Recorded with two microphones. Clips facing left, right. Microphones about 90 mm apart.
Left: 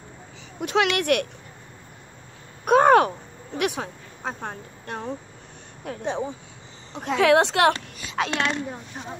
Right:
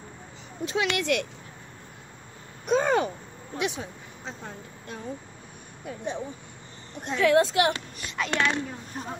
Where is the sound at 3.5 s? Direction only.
65° left (ahead or behind).